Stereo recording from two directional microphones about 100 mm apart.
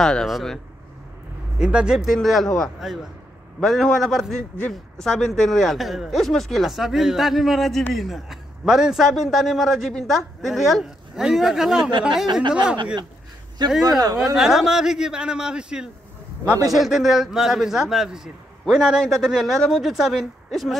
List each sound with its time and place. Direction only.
0.0 s a man's voice: 5° left (ahead or behind)
1.6 s a man's voice: 10° right (ahead or behind)
2.0 s a man's voice: centre (ahead or behind)
13.6 s speech: 50° right (ahead or behind)
14.3 s a man's voice: 5° right (ahead or behind)